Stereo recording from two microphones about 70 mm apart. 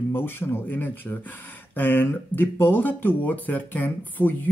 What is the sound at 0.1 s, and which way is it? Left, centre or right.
Speech, left.